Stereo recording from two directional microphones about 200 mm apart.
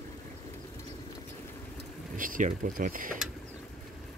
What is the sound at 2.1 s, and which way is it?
Speech, 40° right (ahead or behind).